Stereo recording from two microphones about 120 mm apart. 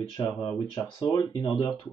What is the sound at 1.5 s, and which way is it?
Speech, 35° left (ahead or behind).